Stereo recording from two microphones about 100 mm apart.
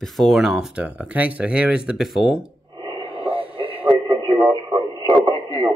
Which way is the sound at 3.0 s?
10° right (ahead or behind).